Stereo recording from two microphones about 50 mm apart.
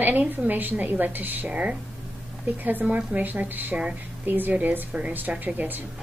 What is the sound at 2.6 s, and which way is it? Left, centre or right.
A woman's voice, right.